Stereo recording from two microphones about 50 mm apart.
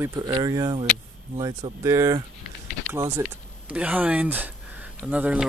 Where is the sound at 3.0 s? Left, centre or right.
Right.